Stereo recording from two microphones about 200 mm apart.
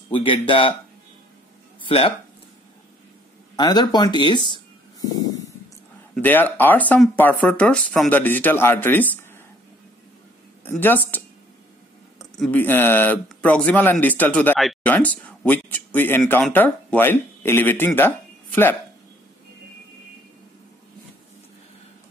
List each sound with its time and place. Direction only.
0.1 s speech: 25° left (ahead or behind)
1.8 s speech: 25° left (ahead or behind)
3.5 s speech: 20° left (ahead or behind)
5.0 s a sound: 20° left (ahead or behind)
6.1 s speech: 10° left (ahead or behind)
10.6 s speech: 10° left (ahead or behind)
12.4 s speech: 10° left (ahead or behind)